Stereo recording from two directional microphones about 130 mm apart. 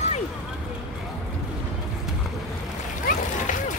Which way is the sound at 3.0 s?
80° left.